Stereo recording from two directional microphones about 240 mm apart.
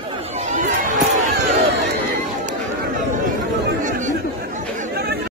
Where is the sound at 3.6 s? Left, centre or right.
Right.